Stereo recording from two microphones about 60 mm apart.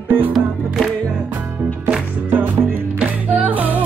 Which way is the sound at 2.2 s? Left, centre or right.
Right.